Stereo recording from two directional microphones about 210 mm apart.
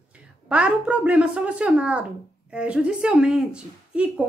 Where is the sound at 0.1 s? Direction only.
5° right (ahead or behind).